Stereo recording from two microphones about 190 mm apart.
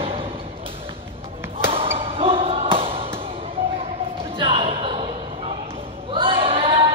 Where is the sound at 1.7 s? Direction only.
30° right (ahead or behind).